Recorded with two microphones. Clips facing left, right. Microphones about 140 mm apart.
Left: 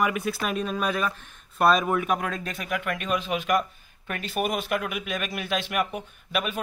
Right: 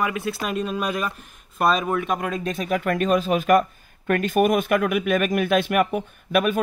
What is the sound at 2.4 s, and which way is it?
Speech, 30° right (ahead or behind).